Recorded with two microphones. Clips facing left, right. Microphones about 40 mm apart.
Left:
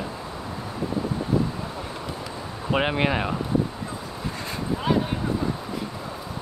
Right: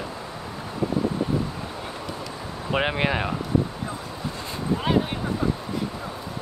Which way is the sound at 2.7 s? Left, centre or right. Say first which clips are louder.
Left 1 dB; centre.